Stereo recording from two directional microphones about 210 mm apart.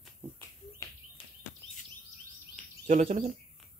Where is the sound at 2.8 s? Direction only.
30° right (ahead or behind).